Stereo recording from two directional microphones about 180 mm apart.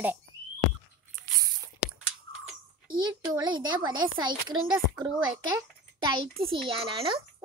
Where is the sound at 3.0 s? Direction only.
25° right (ahead or behind).